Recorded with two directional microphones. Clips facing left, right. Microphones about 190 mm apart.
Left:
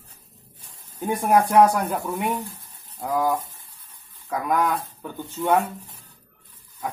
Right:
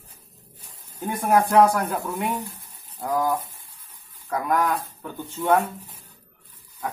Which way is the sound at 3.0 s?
10° left (ahead or behind).